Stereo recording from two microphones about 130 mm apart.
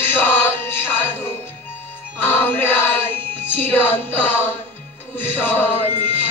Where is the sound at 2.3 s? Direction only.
15° left (ahead or behind).